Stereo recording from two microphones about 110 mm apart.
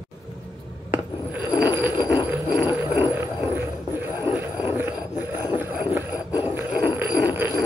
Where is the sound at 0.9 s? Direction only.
15° right (ahead or behind).